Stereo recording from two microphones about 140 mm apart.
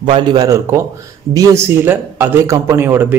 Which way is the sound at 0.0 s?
35° right (ahead or behind).